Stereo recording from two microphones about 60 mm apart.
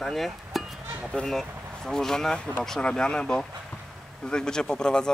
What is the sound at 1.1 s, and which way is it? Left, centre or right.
Speech, centre.